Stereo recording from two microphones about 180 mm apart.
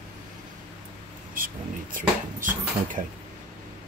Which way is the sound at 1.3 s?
50° right (ahead or behind).